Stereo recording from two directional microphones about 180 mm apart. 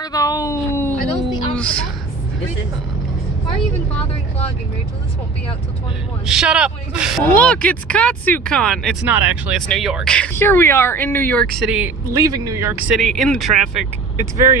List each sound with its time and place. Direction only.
0.0 s a sound: 20° left (ahead or behind)
6.2 s speech: 5° right (ahead or behind)
7.3 s speech: 5° left (ahead or behind)
11.5 s speech: 5° right (ahead or behind)
12.1 s speech: 20° right (ahead or behind); by 13.8 s centre (ahead or behind)